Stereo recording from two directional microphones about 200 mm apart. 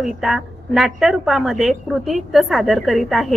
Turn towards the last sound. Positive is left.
turn(degrees=0)  # may be behind; listen again after turning